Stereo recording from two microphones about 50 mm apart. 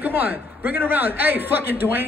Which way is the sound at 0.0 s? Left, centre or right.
Right.